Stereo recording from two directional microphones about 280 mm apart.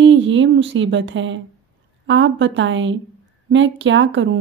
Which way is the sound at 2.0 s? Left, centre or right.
Right.